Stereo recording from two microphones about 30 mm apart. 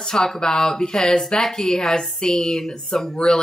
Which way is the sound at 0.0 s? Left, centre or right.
Centre.